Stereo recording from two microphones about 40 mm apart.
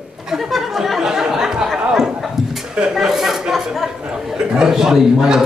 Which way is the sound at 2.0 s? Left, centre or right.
Centre.